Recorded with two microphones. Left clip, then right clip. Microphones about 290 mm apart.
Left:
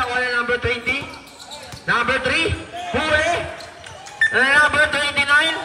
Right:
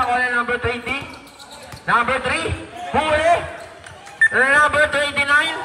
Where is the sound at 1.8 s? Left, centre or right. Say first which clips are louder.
Right 1 dB; centre.